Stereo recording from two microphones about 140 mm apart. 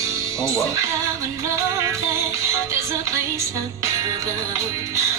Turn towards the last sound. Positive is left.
turn(degrees=-20)  # may be behind; listen again after turning